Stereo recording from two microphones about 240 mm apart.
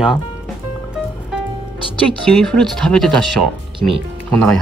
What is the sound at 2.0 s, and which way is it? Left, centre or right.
Speech, centre.